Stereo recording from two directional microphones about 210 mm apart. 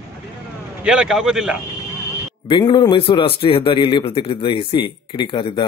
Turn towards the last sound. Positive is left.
turn(degrees=25)  # may be behind; listen again after turning